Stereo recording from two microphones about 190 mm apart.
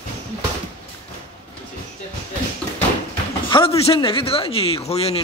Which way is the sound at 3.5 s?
25° left (ahead or behind).